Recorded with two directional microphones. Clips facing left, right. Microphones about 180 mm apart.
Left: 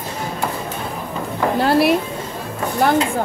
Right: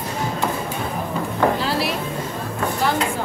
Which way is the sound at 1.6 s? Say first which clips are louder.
Left 8 dB; 55° left (ahead or behind).